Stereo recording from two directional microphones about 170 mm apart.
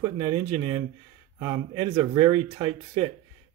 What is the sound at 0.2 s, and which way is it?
Speech, 35° right (ahead or behind).